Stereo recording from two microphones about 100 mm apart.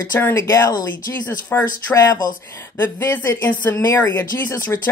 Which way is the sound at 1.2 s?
15° left (ahead or behind).